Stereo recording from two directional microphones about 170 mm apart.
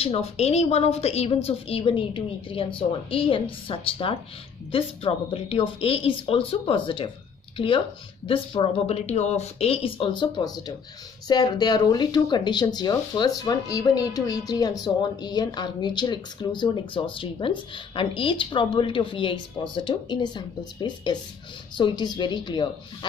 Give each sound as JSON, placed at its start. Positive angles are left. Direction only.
{"t": 0.0, "sound": "a woman's voice", "side_deg": 35}